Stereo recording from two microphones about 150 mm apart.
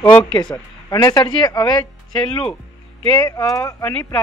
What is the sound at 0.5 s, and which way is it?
Speech, 25° left (ahead or behind).